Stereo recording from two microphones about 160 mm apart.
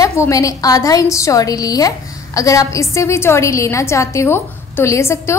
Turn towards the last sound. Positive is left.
turn(degrees=15)  # may be behind; listen again after turning